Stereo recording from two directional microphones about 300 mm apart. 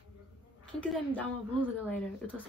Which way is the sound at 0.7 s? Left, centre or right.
Centre.